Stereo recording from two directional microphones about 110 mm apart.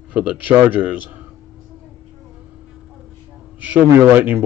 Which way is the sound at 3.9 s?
20° right (ahead or behind).